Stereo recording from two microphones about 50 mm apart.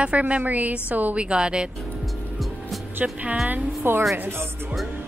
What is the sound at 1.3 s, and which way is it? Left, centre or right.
Speech, centre.